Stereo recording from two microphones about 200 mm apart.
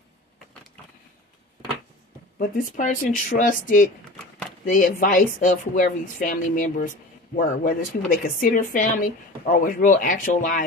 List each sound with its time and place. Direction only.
2.3 s speech: 45° left (ahead or behind)